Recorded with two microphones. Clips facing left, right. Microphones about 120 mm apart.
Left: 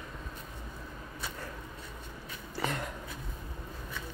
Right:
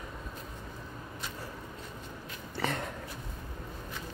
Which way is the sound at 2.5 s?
60° right (ahead or behind).